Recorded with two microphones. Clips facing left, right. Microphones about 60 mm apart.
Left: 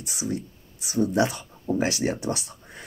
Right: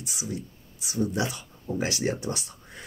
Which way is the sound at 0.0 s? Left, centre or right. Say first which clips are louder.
Left 5 dB; left.